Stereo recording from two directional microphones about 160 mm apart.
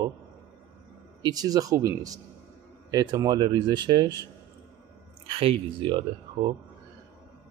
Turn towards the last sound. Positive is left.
turn(degrees=-30)  # may be behind; listen again after turning